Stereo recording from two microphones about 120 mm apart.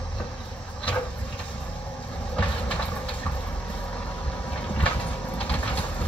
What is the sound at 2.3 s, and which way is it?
Train, 10° left (ahead or behind).